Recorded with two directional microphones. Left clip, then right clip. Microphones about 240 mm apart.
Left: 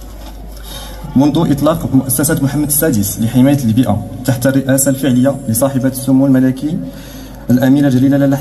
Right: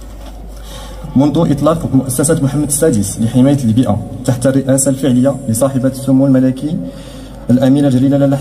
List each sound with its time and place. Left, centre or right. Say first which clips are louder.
1.1 s a man's voice: even; right